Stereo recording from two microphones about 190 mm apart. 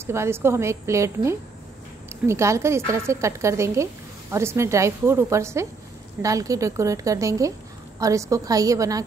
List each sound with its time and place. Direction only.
0.0 s a woman's voice: 15° right (ahead or behind)